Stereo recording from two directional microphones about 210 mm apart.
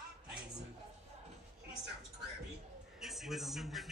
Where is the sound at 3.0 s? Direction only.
Centre (ahead or behind).